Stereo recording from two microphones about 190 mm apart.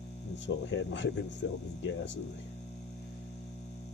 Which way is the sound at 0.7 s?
70° left (ahead or behind).